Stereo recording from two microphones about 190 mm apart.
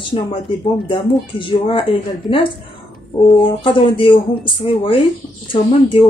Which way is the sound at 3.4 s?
25° left (ahead or behind).